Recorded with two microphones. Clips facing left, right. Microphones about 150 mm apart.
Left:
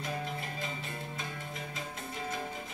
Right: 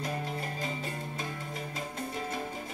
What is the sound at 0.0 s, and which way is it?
Music, 40° right (ahead or behind).